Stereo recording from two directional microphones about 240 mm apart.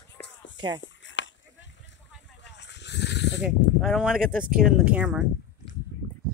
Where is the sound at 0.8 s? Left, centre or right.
Left.